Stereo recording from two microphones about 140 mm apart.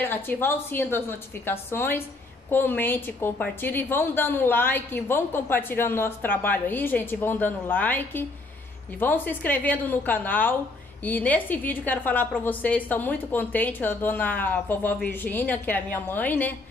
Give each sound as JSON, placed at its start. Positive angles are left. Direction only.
{"t": 0.0, "sound": "a woman's voice", "side_deg": 15}